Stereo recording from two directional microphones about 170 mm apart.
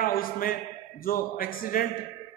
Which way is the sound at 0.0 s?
55° left (ahead or behind).